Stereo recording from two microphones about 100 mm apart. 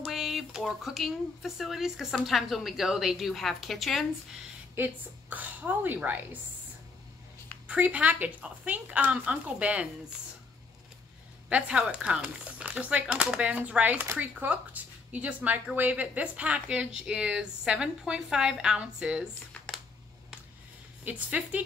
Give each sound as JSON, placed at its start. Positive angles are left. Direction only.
{"t": 0.0, "sound": "speech", "side_deg": 0}
{"t": 4.7, "sound": "speech", "side_deg": -15}
{"t": 7.6, "sound": "speech", "side_deg": -15}
{"t": 11.4, "sound": "speech", "side_deg": -10}
{"t": 19.5, "sound": "a sound", "side_deg": 10}
{"t": 21.0, "sound": "speech", "side_deg": -15}